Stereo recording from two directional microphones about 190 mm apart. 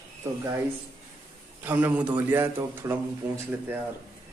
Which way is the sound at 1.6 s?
10° right (ahead or behind).